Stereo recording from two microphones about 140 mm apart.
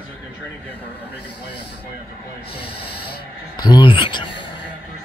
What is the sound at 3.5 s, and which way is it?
Speech, 30° left (ahead or behind).